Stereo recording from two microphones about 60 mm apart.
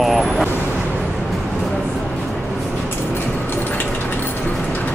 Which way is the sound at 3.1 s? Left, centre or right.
Left.